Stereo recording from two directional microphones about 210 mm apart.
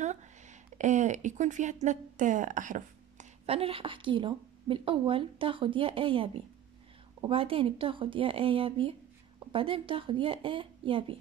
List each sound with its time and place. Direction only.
0.0 s speech: 35° right (ahead or behind)